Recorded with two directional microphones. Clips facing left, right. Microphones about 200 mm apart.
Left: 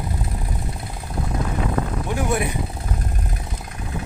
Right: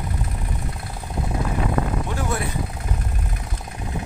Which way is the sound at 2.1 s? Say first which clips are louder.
Left 4 dB; 15° left (ahead or behind).